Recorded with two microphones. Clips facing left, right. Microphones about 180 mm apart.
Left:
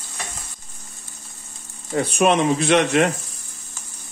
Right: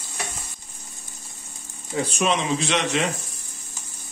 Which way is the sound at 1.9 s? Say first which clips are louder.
Left 5 dB; 60° left (ahead or behind).